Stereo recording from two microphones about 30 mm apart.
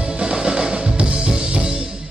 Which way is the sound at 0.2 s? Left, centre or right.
Right.